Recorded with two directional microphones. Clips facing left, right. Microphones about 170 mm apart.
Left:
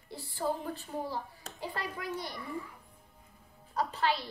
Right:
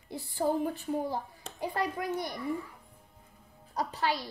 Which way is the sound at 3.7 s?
15° right (ahead or behind).